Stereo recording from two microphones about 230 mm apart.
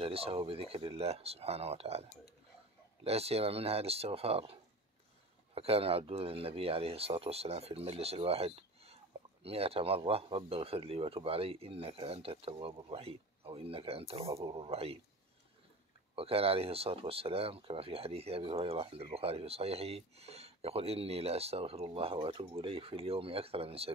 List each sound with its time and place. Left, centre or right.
0.0 s speech: right
16.2 s speech: right